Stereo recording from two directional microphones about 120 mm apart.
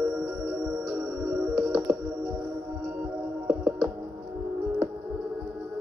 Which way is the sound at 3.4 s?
15° right (ahead or behind).